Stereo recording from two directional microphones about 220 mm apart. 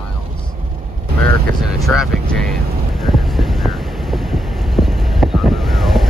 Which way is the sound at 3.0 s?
Centre (ahead or behind).